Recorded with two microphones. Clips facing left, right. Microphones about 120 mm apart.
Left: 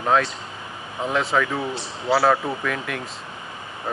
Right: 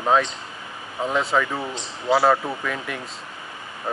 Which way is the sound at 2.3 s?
Centre (ahead or behind).